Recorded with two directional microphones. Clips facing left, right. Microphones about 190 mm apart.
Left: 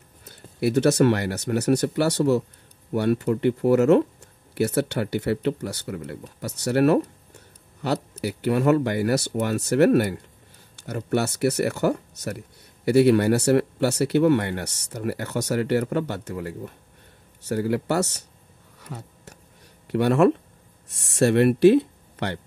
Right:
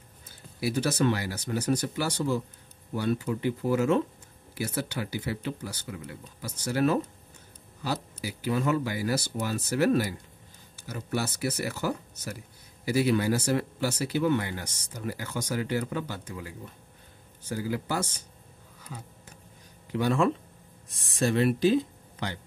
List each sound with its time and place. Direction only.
0.2 s speech: 65° left (ahead or behind)
18.8 s a sound: 70° left (ahead or behind)
19.9 s speech: 65° left (ahead or behind)